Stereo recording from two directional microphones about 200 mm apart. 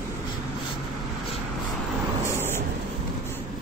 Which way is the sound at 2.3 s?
10° right (ahead or behind).